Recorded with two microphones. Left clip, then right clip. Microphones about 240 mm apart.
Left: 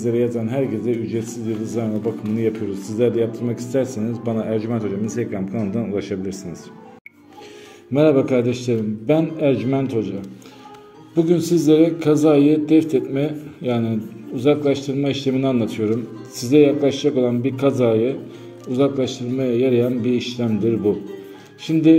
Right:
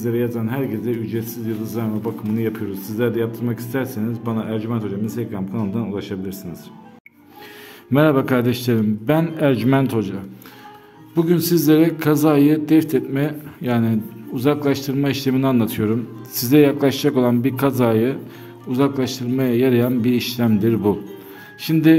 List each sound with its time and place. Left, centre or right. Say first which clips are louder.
0.0 s a man's voice: left 2 dB; centre
7.9 s a man's voice: left 1 dB; right
11.3 s a man's voice: even; right